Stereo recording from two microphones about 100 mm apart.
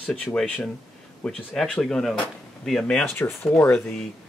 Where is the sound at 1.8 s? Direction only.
Centre (ahead or behind).